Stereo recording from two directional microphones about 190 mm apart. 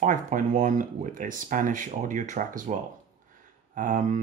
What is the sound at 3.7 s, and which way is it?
Speech, 45° right (ahead or behind).